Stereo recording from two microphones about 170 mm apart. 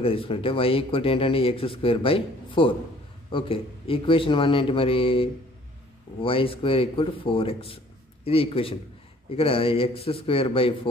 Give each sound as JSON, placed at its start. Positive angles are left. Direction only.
{"t": 0.0, "sound": "speech", "side_deg": 30}